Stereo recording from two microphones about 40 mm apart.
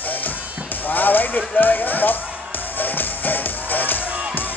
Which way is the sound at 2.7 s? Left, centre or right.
Left.